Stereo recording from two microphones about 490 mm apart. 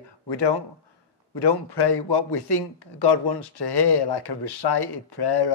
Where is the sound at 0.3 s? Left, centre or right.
Left.